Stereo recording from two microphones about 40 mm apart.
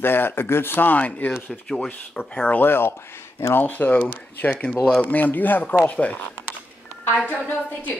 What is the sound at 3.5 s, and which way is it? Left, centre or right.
Speech, left.